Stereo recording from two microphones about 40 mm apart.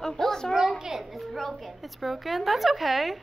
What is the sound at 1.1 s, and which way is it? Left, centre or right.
A woman's voice, centre.